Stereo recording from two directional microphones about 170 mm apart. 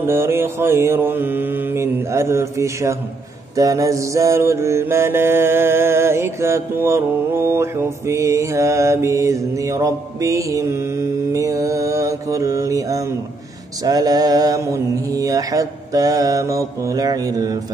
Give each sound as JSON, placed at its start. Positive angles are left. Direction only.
{"t": 0.0, "sound": "mantra", "side_deg": -15}